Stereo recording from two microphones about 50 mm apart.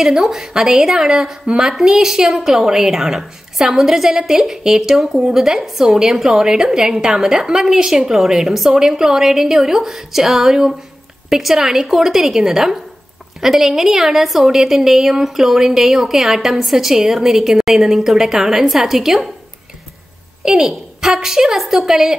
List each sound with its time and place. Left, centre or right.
0.0 s a woman's voice: centre
20.4 s a woman's voice: centre